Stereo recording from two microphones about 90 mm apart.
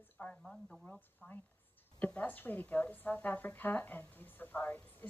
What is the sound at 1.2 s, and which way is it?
A woman's voice, 15° left (ahead or behind).